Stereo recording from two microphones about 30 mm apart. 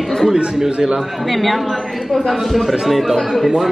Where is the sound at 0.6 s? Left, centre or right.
Right.